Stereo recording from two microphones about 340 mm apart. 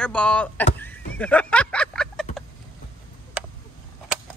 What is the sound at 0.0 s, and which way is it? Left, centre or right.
Speech, centre.